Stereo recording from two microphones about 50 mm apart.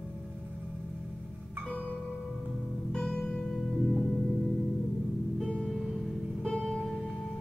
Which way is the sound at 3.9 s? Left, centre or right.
Left.